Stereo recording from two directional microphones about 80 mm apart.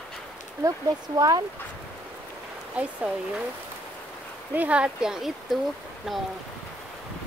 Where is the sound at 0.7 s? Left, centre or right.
Right.